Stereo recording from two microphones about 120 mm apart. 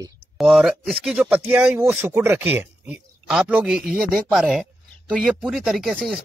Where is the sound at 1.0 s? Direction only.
10° right (ahead or behind).